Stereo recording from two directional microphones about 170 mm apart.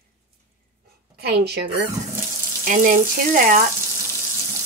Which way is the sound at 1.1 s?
70° right (ahead or behind).